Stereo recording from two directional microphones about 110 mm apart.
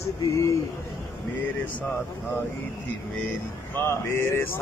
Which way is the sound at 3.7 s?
20° left (ahead or behind).